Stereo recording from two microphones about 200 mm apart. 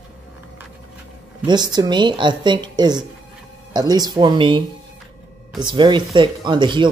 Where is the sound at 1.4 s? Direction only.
20° right (ahead or behind).